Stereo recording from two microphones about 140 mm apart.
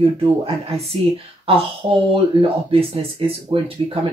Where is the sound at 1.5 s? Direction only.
45° right (ahead or behind).